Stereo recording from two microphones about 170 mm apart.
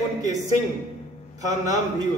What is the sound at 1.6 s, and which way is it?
Speech, 20° right (ahead or behind).